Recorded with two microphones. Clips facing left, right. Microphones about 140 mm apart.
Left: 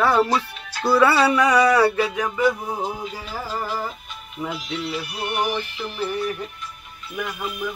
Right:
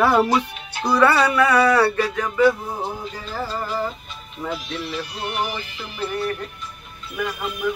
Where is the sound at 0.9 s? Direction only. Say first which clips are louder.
Even; 10° left (ahead or behind).